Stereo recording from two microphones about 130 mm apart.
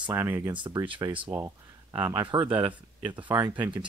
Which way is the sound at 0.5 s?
40° right (ahead or behind).